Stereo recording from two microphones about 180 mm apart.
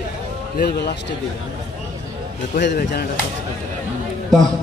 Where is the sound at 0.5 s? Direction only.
65° left (ahead or behind).